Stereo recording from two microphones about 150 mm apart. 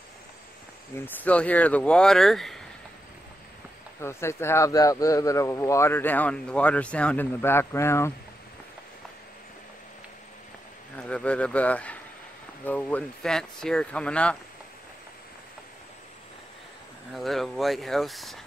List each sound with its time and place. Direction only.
0.9 s a man's voice: 10° left (ahead or behind)
4.0 s a man's voice: 15° left (ahead or behind)
11.0 s a man's voice: 5° left (ahead or behind)
17.1 s speech: centre (ahead or behind)